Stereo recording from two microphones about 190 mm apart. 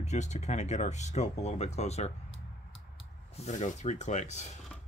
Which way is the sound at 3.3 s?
35° left (ahead or behind).